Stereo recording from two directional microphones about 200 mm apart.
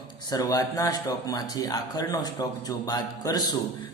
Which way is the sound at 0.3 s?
20° left (ahead or behind).